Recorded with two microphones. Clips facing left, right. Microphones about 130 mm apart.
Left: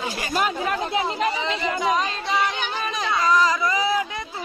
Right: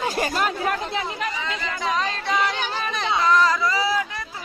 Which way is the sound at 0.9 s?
25° left (ahead or behind).